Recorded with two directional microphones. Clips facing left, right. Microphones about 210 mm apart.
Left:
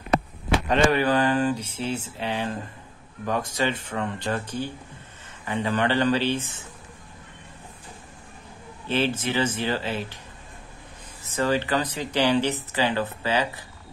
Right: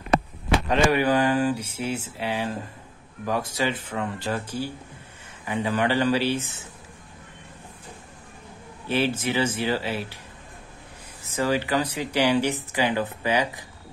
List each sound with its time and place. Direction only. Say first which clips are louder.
0.9 s speech: right 1 dB; 10° right (ahead or behind)
8.8 s speech: right 1 dB; 10° right (ahead or behind)
11.3 s speech: even; 10° right (ahead or behind)